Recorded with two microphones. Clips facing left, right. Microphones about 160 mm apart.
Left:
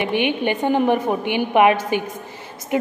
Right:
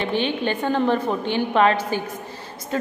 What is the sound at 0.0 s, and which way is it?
A woman's voice, 15° left (ahead or behind).